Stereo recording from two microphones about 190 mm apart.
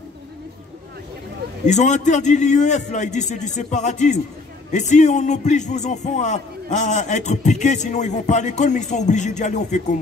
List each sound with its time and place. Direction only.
1.7 s speech: 40° left (ahead or behind)